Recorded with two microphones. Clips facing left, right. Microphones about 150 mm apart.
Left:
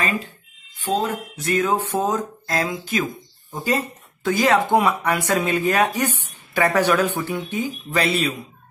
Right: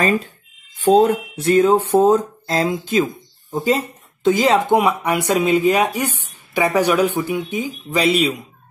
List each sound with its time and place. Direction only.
0.7 s speech: 40° right (ahead or behind); by 8.4 s 15° right (ahead or behind)